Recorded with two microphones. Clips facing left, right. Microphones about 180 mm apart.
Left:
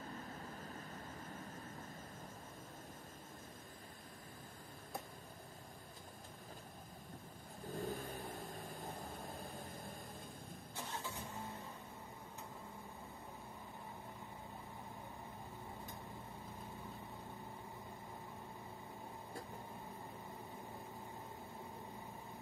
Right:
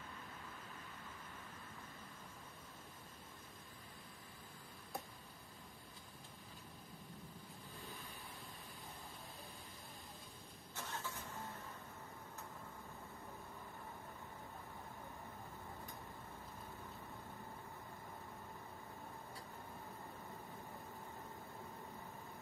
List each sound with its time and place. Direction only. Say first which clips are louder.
7.7 s vehicle: left 13 dB; 45° left (ahead or behind)
10.8 s vehicle: left 1 dB; 15° left (ahead or behind)